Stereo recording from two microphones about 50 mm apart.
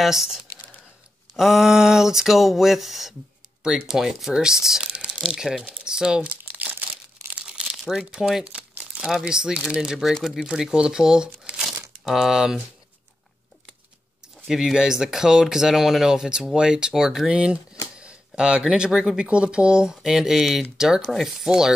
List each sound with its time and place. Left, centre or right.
0.0 s speech: centre
1.3 s a sound: centre
3.8 s speech: centre
4.9 s speech: centre
6.4 s crumpling: right
7.3 s crumpling: centre
8.1 s speech: centre
14.5 s speech: centre
17.3 s speech: right
17.9 s camera: centre
18.9 s speech: centre